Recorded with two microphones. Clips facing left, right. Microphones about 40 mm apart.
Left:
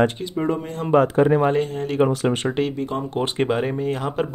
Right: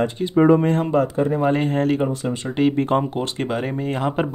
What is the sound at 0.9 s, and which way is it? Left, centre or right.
Speech, left.